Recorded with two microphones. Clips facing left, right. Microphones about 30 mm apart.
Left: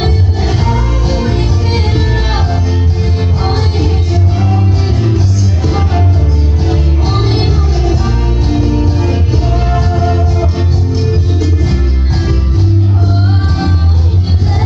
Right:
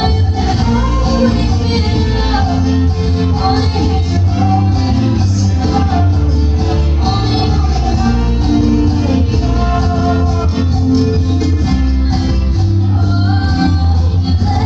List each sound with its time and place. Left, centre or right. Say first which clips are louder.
1.0 s music: right 5 dB; right